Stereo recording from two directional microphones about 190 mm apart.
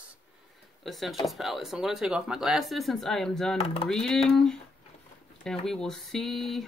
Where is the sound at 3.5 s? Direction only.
30° left (ahead or behind).